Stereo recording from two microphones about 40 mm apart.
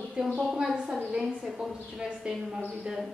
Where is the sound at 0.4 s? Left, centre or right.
Centre.